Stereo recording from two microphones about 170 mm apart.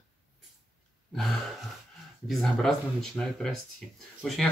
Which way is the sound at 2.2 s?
Centre (ahead or behind).